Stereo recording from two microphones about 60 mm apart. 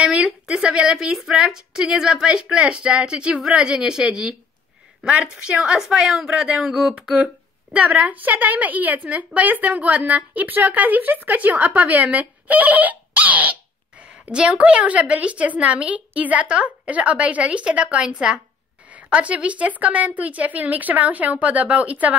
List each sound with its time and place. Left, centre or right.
0.0 s a woman's voice: centre